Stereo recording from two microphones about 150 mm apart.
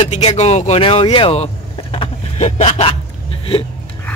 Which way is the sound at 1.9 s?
45° left (ahead or behind).